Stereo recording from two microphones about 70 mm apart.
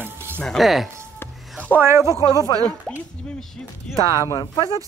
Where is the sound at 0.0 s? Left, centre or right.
Right.